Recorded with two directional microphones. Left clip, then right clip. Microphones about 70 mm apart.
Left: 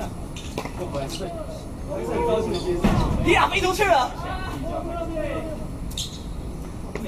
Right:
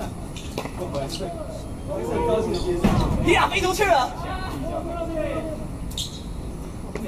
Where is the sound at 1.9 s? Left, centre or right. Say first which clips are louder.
Even; left.